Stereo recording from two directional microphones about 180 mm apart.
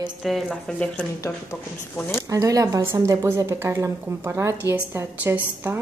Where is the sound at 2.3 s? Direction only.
20° right (ahead or behind).